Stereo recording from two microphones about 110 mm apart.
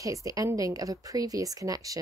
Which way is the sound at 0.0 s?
30° right (ahead or behind).